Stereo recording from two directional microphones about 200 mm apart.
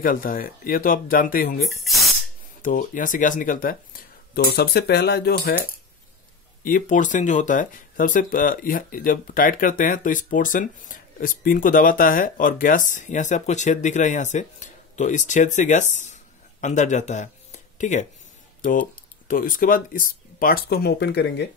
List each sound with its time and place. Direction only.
0.0 s speech: 45° left (ahead or behind)
2.6 s speech: 40° left (ahead or behind)
6.6 s speech: 40° left (ahead or behind)
19.2 s speech: 45° left (ahead or behind)